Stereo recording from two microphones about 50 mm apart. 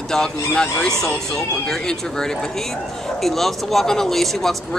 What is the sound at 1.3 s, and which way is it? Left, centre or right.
Speech, centre.